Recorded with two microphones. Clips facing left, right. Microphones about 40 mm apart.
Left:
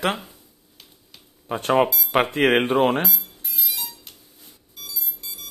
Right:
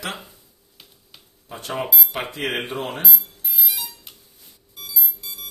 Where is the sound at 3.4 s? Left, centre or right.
Centre.